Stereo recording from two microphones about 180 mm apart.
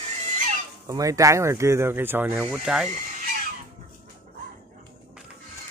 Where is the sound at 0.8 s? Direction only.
20° right (ahead or behind); by 2.8 s 5° right (ahead or behind).